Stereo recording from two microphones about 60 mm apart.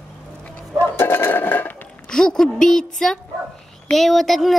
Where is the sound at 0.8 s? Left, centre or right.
Left.